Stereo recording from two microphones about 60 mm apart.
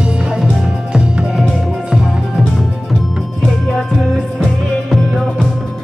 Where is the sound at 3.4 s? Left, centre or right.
Centre.